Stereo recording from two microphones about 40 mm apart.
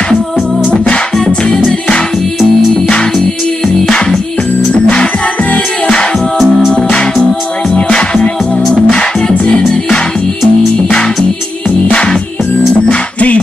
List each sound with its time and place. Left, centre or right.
1.1 s music: centre
3.6 s music: left
5.0 s music: left
12.8 s music: left